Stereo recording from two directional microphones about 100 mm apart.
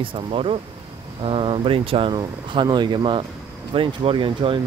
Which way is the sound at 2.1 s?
45° right (ahead or behind).